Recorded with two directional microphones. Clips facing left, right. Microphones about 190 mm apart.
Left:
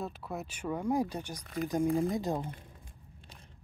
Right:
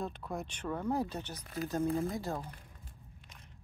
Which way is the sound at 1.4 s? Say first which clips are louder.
Left 4 dB; 5° right (ahead or behind).